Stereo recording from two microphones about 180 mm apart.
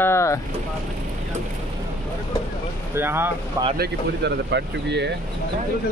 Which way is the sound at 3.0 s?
10° right (ahead or behind).